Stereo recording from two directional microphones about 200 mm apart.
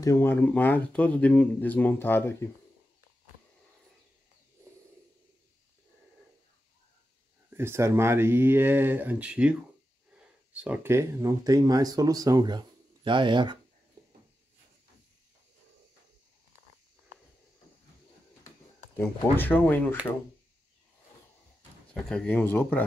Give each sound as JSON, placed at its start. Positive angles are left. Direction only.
{"t": 0.0, "sound": "speech", "side_deg": 15}
{"t": 7.4, "sound": "speech", "side_deg": -10}
{"t": 19.3, "sound": "speech", "side_deg": 10}
{"t": 21.9, "sound": "speech", "side_deg": 5}